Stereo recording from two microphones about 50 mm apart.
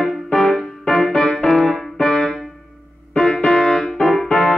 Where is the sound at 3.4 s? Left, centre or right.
Centre.